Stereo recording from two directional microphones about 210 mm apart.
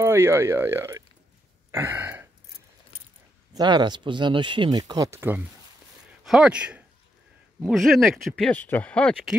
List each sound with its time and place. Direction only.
0.0 s speech: 10° right (ahead or behind)
1.7 s throat clearing: 10° right (ahead or behind)
3.5 s speech: 20° right (ahead or behind); by 9.3 s centre (ahead or behind)